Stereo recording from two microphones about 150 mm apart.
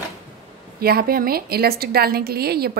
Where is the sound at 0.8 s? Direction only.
85° right.